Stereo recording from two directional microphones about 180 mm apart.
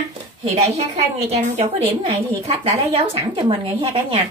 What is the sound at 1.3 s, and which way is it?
A woman's voice, 40° right (ahead or behind).